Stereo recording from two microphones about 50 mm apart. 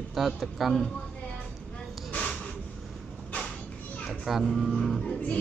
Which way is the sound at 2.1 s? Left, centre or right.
Left.